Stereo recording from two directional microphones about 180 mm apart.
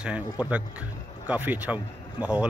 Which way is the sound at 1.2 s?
10° right (ahead or behind).